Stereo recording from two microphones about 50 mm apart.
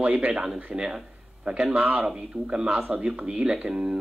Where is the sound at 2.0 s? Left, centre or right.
Centre.